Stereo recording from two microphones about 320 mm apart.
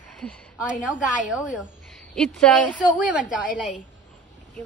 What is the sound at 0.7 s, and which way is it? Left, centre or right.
Speech, left.